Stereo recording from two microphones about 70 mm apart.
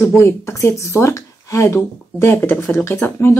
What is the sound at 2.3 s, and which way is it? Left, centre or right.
A woman's voice, left.